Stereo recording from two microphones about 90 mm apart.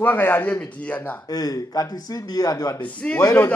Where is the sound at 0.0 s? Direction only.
20° left (ahead or behind).